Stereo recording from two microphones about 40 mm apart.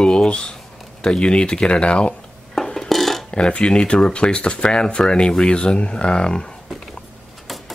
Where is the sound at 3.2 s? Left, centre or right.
Left.